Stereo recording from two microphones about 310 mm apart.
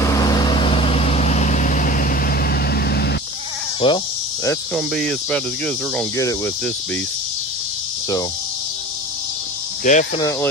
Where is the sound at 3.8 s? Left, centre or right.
Centre.